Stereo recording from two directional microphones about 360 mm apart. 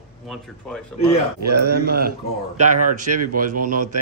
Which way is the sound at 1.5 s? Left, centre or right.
Right.